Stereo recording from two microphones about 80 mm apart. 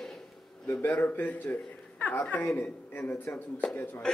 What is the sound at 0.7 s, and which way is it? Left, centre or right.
A man's voice, left.